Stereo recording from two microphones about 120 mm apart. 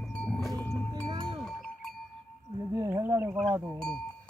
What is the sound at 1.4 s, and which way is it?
Cowbell, 5° left (ahead or behind).